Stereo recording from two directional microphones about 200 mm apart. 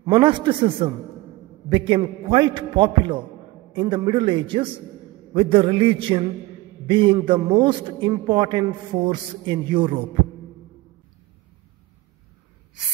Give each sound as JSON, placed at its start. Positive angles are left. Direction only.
{"t": 0.0, "sound": "a man's voice", "side_deg": -25}